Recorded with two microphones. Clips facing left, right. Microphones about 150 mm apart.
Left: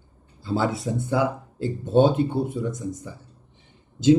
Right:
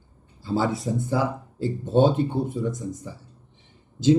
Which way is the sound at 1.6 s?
Centre (ahead or behind).